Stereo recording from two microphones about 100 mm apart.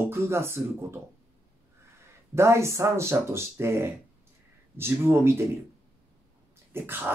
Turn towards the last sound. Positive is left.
turn(degrees=-20)  # may be behind; listen again after turning